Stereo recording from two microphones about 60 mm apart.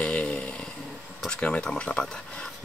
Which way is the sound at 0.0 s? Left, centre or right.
Left.